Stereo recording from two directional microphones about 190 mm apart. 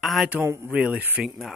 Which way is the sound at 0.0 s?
Centre (ahead or behind).